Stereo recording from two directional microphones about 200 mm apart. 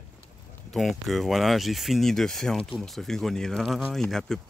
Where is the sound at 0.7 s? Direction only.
Centre (ahead or behind).